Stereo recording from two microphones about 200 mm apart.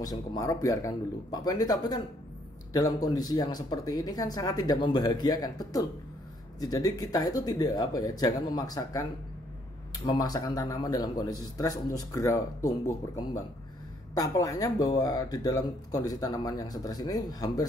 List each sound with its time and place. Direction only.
0.0 s a man's voice: 20° left (ahead or behind)
10.0 s a man's voice: 20° left (ahead or behind)